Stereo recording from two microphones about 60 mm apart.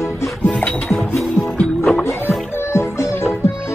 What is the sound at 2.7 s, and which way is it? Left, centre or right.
Music, left.